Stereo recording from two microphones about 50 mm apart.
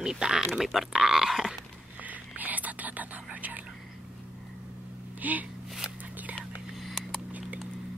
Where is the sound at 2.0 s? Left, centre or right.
Right.